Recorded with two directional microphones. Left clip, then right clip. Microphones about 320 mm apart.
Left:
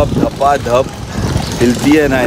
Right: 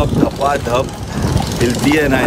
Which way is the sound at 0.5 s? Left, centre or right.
Left.